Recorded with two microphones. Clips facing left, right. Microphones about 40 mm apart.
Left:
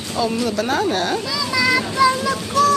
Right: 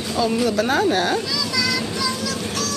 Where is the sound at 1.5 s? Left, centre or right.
Left.